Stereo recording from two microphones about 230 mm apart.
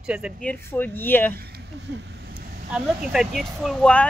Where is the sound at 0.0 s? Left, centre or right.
Centre.